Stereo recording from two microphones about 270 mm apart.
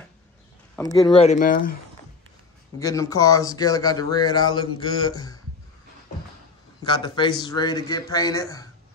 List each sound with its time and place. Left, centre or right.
1.1 s speech: left
2.8 s speech: centre
6.8 s speech: centre